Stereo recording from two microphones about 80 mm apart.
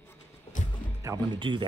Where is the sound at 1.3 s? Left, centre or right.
Right.